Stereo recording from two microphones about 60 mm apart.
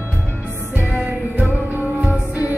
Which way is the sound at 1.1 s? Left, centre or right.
Right.